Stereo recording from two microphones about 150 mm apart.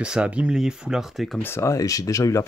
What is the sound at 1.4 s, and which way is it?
Speech, 15° left (ahead or behind).